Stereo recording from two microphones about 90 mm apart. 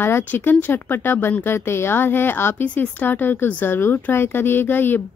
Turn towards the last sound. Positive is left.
turn(degrees=25)  # may be behind; listen again after turning